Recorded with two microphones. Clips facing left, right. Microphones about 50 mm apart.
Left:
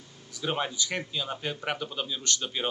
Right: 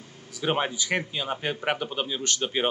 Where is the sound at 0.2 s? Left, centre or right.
Right.